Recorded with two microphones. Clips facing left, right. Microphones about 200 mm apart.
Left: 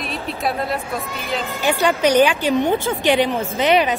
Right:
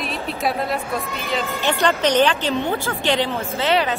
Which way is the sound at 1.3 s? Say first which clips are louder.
Left 1 dB; 10° left (ahead or behind).